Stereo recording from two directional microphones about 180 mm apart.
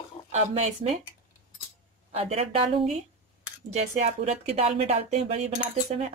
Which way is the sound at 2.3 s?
35° right (ahead or behind).